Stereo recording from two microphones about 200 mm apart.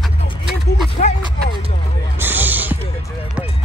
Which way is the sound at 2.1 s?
10° right (ahead or behind).